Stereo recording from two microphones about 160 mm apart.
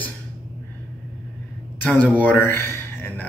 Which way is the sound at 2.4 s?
15° left (ahead or behind).